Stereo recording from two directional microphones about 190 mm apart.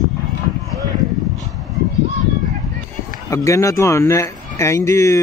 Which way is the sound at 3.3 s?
15° left (ahead or behind).